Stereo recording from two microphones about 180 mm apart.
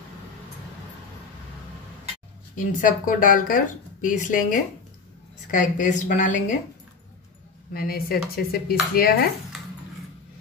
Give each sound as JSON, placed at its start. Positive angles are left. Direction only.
{"t": 2.5, "sound": "speech", "side_deg": 50}
{"t": 7.7, "sound": "speech", "side_deg": 55}